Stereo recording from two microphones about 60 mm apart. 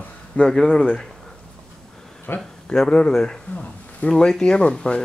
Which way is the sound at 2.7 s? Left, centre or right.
Centre.